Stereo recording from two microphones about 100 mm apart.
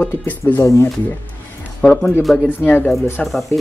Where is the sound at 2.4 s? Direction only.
20° left (ahead or behind).